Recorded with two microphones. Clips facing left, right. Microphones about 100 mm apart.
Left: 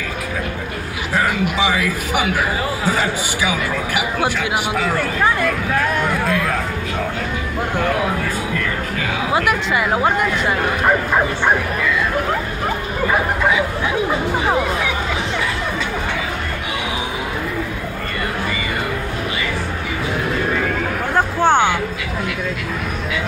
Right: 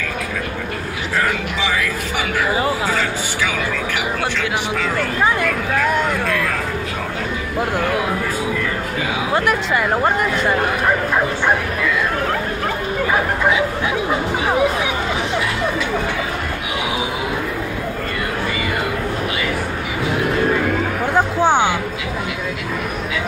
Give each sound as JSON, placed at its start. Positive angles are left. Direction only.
{"t": 1.1, "sound": "music", "side_deg": 15}
{"t": 3.0, "sound": "speech", "side_deg": 15}
{"t": 6.2, "sound": "speech", "side_deg": 5}
{"t": 9.3, "sound": "speech", "side_deg": 5}
{"t": 21.4, "sound": "speech", "side_deg": -15}